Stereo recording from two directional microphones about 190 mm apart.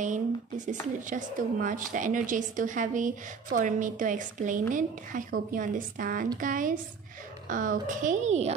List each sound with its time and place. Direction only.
0.0 s a woman's voice: 40° right (ahead or behind)